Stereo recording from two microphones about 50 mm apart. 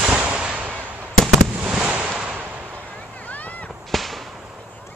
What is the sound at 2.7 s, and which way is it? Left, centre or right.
Vehicle, left.